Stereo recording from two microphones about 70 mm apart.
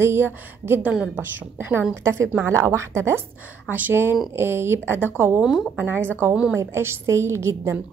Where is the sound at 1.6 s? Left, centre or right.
Right.